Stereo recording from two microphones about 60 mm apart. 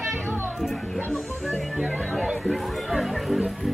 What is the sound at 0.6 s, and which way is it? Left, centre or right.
Music, centre.